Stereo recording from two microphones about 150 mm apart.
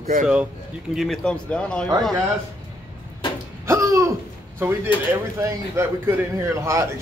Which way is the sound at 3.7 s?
20° right (ahead or behind).